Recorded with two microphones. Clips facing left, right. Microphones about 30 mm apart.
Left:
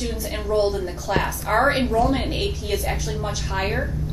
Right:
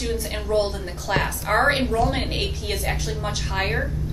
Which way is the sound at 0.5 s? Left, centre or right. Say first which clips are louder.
Left 3 dB; right.